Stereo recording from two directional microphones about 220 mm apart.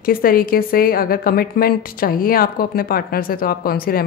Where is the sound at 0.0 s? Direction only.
40° left (ahead or behind).